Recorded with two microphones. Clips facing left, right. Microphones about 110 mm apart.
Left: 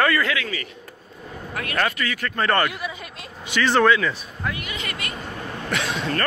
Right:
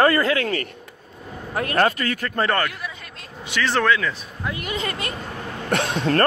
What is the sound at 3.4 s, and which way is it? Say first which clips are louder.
Speech: left 2 dB; centre (ahead or behind).